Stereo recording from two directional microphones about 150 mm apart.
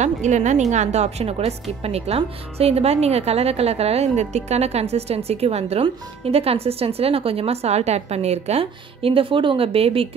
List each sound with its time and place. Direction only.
0.0 s a woman's voice: 50° right (ahead or behind)